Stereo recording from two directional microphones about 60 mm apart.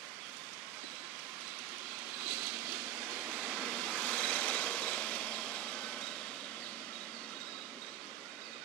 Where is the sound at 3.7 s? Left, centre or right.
Centre.